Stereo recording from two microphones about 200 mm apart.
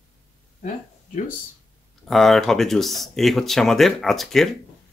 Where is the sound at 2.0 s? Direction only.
Centre (ahead or behind).